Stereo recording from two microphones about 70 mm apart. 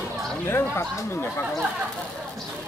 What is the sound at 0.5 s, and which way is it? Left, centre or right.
Speech, left.